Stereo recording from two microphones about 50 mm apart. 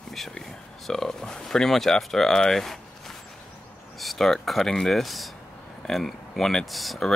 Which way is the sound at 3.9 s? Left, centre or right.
Centre.